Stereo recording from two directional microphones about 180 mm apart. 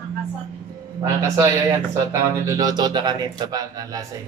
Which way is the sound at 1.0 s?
15° right (ahead or behind).